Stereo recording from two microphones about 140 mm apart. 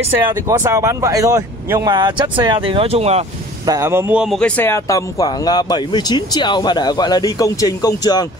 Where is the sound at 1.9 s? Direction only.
30° right (ahead or behind); by 3.3 s 50° right (ahead or behind).